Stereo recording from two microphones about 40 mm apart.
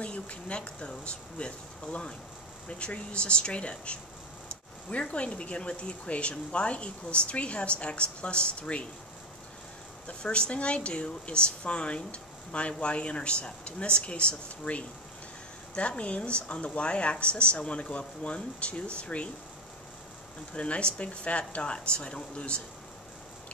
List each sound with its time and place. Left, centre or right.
0.0 s speech: left
10.0 s speech: left
20.5 s speech: left